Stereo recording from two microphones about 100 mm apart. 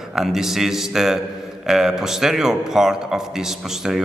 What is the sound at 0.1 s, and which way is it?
A man's voice, 5° right (ahead or behind).